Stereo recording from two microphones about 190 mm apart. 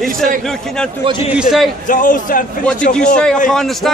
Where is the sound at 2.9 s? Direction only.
5° left (ahead or behind).